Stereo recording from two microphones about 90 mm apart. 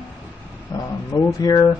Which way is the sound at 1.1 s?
40° left (ahead or behind).